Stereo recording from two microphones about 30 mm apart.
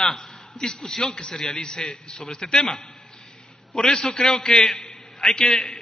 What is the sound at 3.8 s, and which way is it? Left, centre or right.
A man's voice, left.